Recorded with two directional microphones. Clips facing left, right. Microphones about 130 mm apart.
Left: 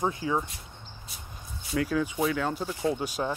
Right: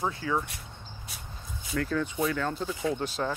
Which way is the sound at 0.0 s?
20° left (ahead or behind).